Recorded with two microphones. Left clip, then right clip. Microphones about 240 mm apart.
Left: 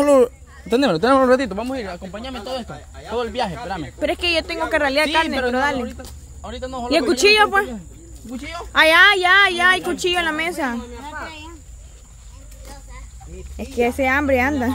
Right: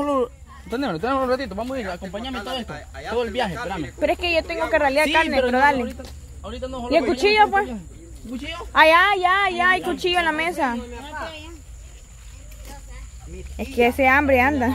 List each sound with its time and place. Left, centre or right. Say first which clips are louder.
0.0 s speech: left 8 dB; left
3.2 s a woman's voice: left 1 dB; centre
6.4 s speech: left 2 dB; left
8.7 s a woman's voice: left 2 dB; centre
13.6 s a woman's voice: right 1 dB; centre